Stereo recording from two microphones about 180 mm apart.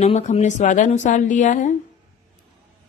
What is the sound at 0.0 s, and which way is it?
A woman's voice, 35° left (ahead or behind).